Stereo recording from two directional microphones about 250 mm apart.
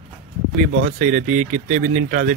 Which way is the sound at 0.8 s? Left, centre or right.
Right.